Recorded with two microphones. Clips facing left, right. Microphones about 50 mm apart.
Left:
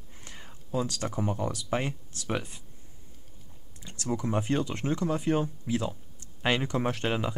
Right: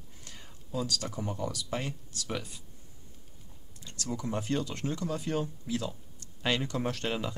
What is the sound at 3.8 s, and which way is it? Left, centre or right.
Speech, left.